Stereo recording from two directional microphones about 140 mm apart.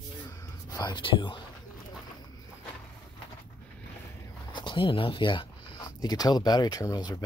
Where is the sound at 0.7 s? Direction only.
30° left (ahead or behind).